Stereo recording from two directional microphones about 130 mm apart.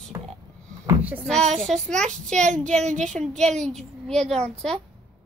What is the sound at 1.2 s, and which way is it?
A child's voice, centre (ahead or behind).